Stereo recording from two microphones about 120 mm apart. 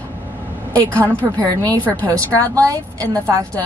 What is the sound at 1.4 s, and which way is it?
A woman's voice, 30° right (ahead or behind).